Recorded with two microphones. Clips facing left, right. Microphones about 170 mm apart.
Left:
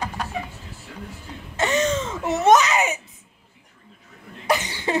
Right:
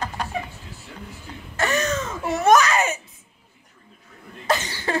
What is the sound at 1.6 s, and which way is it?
Baby cry, 25° left (ahead or behind).